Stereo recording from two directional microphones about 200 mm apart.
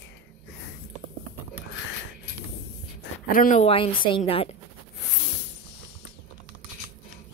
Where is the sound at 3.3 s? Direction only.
40° left (ahead or behind).